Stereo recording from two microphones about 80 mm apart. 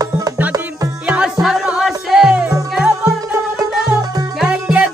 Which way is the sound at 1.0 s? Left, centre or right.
Centre.